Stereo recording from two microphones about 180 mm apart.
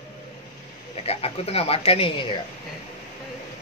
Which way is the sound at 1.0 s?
35° left (ahead or behind).